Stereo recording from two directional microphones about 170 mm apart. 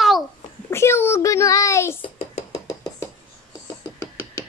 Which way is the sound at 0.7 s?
15° left (ahead or behind).